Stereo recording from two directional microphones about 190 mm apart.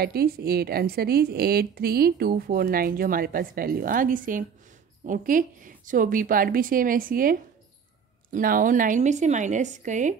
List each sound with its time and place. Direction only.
0.0 s a woman's voice: 55° right (ahead or behind)